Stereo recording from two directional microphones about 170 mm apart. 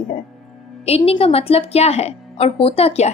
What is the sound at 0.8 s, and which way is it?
A woman's voice, 35° left (ahead or behind).